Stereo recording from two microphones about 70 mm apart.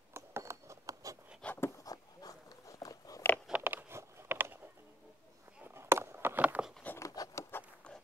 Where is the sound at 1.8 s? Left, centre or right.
Left.